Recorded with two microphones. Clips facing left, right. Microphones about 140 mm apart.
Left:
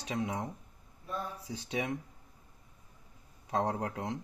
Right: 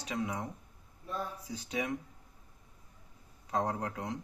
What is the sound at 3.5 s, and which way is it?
Speech, 25° left (ahead or behind).